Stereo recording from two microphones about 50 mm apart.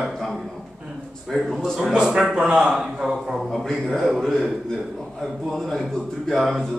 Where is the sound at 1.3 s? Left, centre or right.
Centre.